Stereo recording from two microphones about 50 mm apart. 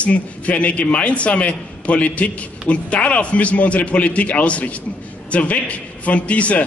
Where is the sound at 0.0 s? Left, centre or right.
Left.